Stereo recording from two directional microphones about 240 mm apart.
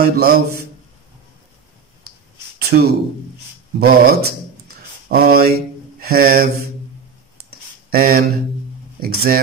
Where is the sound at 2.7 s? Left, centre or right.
Right.